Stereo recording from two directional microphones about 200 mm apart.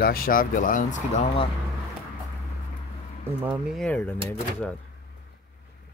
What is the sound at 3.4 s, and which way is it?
Speech, 10° right (ahead or behind).